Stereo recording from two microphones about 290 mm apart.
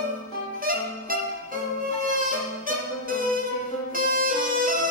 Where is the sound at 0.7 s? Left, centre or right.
Right.